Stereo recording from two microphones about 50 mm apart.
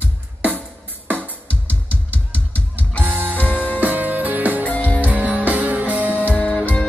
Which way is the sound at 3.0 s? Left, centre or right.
Right.